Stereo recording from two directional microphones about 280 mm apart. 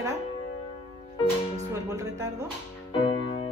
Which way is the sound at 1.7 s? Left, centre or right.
Centre.